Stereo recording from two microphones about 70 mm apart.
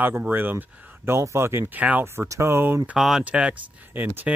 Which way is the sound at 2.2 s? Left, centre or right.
Right.